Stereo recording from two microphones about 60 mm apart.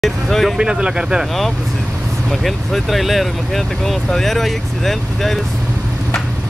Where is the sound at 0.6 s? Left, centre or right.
Centre.